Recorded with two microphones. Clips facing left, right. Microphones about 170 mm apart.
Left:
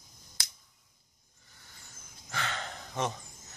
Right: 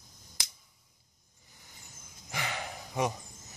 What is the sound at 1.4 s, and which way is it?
Vehicle, 15° right (ahead or behind).